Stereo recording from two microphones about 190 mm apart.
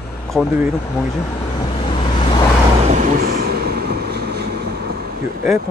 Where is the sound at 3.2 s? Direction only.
55° right (ahead or behind).